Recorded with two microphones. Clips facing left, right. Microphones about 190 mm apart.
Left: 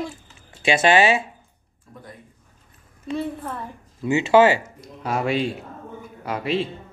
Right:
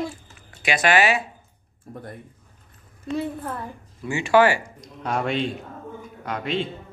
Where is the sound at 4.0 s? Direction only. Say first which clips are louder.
Left 3 dB; 20° left (ahead or behind).